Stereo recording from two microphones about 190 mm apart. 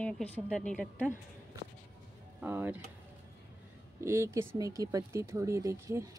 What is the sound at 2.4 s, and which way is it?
Speech, 10° right (ahead or behind).